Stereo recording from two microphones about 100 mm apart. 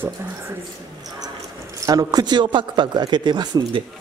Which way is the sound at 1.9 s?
40° right (ahead or behind).